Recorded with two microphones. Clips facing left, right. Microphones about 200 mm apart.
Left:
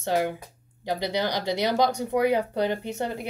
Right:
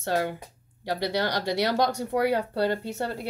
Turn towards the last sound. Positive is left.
turn(degrees=15)  # may be behind; listen again after turning